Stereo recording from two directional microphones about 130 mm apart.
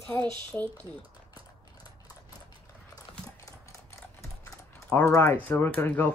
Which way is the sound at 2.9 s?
25° left (ahead or behind).